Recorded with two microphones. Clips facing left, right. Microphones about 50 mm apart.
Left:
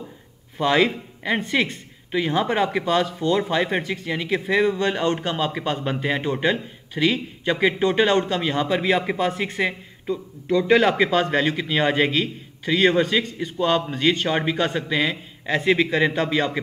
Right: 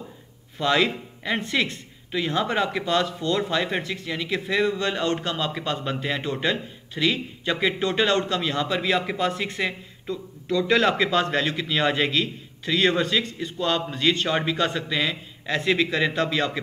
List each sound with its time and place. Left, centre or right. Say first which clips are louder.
0.6 s a man's voice: left 3 dB; centre